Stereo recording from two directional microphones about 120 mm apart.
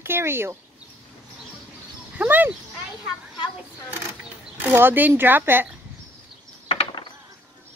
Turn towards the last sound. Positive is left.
turn(degrees=55)  # may be behind; listen again after turning